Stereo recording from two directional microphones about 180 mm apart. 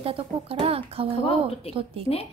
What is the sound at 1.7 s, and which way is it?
Speech, 35° left (ahead or behind).